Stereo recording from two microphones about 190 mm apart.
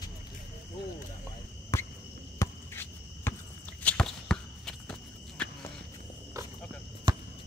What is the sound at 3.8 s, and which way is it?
Walk, 5° left (ahead or behind).